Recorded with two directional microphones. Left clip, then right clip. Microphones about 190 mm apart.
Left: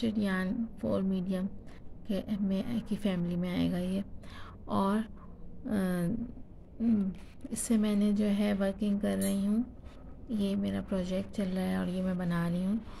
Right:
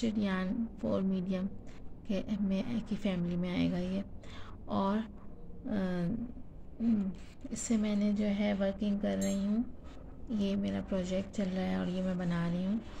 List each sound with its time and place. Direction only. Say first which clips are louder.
0.0 s a woman's voice: left 2 dB; 15° left (ahead or behind)